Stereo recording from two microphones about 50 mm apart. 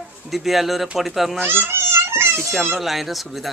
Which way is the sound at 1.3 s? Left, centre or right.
Right.